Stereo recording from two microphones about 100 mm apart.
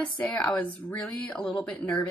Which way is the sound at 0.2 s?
10° left (ahead or behind).